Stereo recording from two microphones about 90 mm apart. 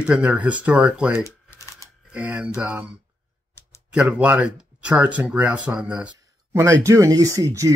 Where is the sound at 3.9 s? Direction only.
15° right (ahead or behind).